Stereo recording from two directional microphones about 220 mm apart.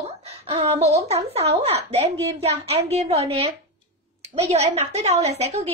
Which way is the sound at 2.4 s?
30° right (ahead or behind).